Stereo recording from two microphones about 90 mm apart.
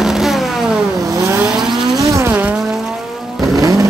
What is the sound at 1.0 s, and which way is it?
Vehicle, 40° right (ahead or behind).